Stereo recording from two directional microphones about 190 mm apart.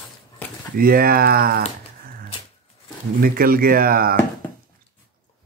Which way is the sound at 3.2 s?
50° right (ahead or behind).